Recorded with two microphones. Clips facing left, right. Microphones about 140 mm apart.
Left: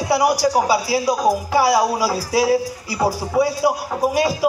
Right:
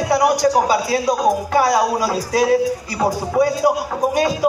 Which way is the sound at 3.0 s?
20° right (ahead or behind).